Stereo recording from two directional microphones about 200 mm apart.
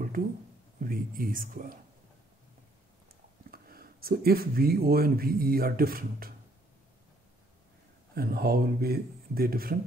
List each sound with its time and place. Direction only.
0.7 s speech: 45° right (ahead or behind)
3.5 s speech: 50° right (ahead or behind)
8.1 s speech: 50° right (ahead or behind)